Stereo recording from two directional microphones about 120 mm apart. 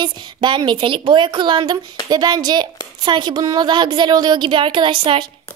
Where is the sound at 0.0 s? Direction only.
40° right (ahead or behind).